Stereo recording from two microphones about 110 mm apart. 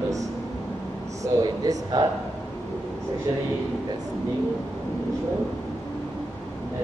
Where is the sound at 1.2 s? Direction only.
35° right (ahead or behind).